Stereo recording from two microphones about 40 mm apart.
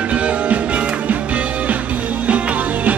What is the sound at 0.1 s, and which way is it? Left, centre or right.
Music, right.